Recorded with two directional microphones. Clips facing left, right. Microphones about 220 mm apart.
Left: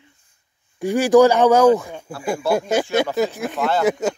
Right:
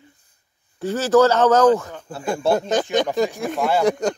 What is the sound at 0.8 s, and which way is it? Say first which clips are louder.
Speech: left 3 dB; 15° left (ahead or behind).